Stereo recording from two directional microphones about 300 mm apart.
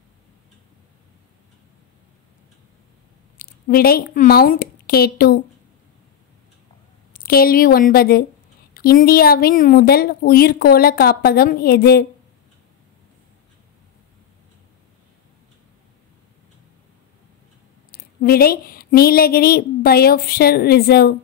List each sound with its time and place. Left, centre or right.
3.3 s a woman's voice: left
7.2 s a woman's voice: left
17.9 s a woman's voice: left